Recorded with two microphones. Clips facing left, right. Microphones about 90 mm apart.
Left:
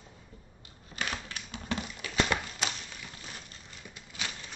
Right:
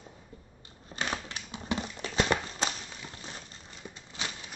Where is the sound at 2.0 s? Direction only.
30° right (ahead or behind).